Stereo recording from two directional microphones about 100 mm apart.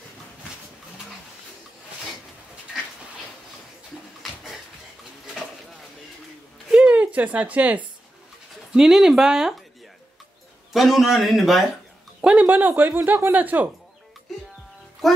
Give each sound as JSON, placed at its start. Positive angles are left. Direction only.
{"t": 5.2, "sound": "a sound", "side_deg": 0}
{"t": 8.7, "sound": "speech", "side_deg": -5}
{"t": 10.7, "sound": "speech", "side_deg": 0}
{"t": 12.2, "sound": "speech", "side_deg": -10}
{"t": 15.0, "sound": "a child's voice", "side_deg": 0}